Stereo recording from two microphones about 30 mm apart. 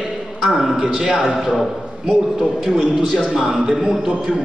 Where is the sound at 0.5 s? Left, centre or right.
Centre.